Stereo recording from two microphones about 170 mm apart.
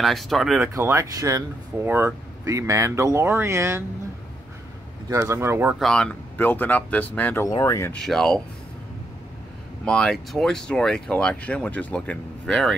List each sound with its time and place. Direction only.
0.0 s speech: centre (ahead or behind)
0.7 s speech: 15° right (ahead or behind)
5.1 s speech: 15° right (ahead or behind)
5.8 s speech: 5° left (ahead or behind)
7.4 s speech: 20° left (ahead or behind)
7.9 s speech: centre (ahead or behind)
9.8 s speech: centre (ahead or behind)